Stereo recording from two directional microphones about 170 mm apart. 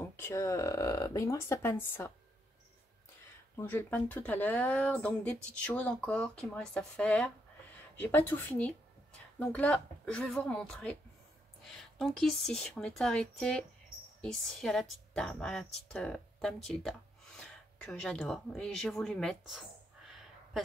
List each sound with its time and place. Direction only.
0.1 s speech: 15° left (ahead or behind)
3.5 s speech: 10° left (ahead or behind)